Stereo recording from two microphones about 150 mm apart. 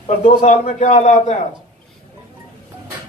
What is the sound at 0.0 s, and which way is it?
A man's voice, 45° left (ahead or behind).